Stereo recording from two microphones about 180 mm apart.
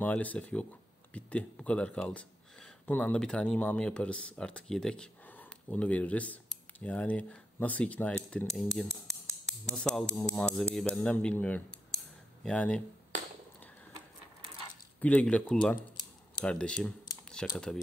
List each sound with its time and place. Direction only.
0.0 s speech: 10° left (ahead or behind)
15.0 s speech: 10° left (ahead or behind)